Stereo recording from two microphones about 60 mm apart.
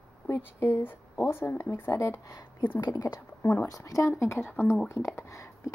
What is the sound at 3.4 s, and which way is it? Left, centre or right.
Speech, left.